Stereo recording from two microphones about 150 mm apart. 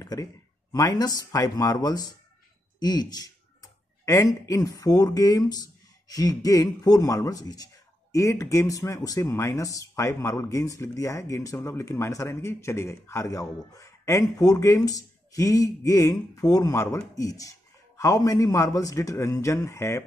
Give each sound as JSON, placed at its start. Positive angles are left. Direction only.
{"t": 0.0, "sound": "speech", "side_deg": 25}